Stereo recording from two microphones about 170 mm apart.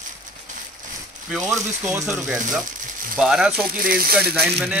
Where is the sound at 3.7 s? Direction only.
60° right (ahead or behind).